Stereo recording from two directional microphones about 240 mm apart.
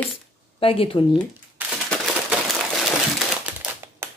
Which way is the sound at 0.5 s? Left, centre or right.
Left.